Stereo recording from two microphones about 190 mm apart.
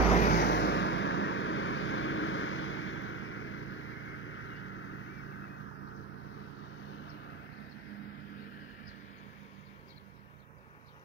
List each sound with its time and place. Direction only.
0.2 s vehicle: 60° left (ahead or behind); by 5.6 s 90° left